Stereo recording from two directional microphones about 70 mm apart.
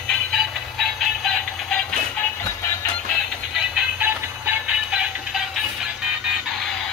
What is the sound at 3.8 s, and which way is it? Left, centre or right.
Music, right.